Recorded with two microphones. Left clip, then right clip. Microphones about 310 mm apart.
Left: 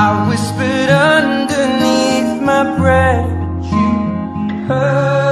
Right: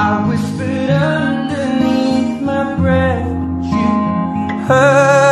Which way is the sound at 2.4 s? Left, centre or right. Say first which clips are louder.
Left 8 dB; left.